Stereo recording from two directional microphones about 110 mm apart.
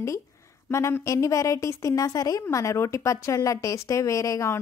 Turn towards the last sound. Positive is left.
turn(degrees=30)  # may be behind; listen again after turning